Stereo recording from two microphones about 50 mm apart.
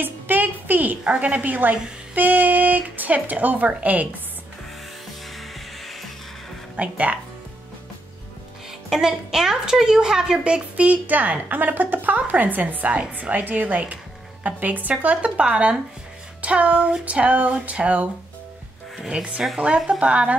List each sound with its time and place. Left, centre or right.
0.0 s a sound: right
1.0 s speech: right
5.3 s music: centre
6.8 s a woman's voice: right
8.9 s a woman's voice: centre
16.3 s a sound: right
17.0 s a woman's voice: right